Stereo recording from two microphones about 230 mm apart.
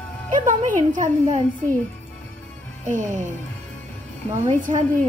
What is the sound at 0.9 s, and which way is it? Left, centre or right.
Speech, right.